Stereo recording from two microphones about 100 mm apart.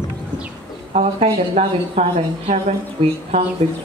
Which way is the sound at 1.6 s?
90° right.